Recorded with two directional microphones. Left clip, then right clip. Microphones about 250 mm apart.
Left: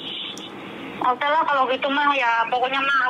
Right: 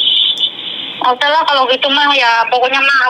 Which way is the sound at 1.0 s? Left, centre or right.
Right.